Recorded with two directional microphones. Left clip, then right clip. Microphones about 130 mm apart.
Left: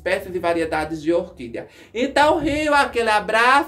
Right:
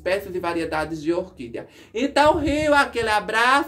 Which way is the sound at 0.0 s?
30° right (ahead or behind).